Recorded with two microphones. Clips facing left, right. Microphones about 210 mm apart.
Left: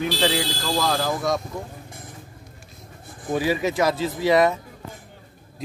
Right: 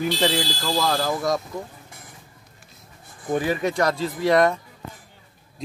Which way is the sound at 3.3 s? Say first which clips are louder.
Left 1 dB; 10° left (ahead or behind).